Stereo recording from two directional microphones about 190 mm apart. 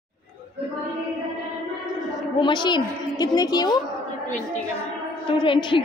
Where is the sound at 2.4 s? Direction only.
25° left (ahead or behind).